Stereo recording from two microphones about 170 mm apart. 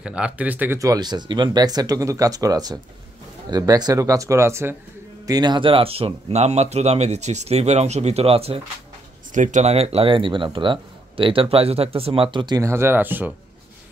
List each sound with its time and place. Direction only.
0.0 s speech: 5° right (ahead or behind); by 8.5 s 35° right (ahead or behind)
9.3 s speech: 45° right (ahead or behind); by 13.3 s 10° right (ahead or behind)